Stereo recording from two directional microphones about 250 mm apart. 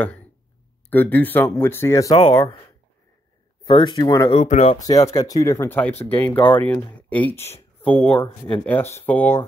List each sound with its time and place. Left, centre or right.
0.8 s speech: centre
3.6 s speech: centre
4.4 s speech: left
4.7 s speech: centre